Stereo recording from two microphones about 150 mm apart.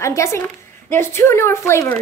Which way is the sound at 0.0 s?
20° left (ahead or behind).